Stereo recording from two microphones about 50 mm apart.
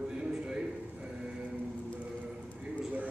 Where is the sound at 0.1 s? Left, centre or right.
Centre.